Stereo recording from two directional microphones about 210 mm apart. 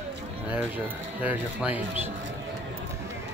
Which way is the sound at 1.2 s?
5° right (ahead or behind).